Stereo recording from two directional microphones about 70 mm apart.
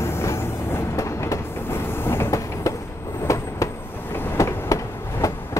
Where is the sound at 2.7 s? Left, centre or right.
Left.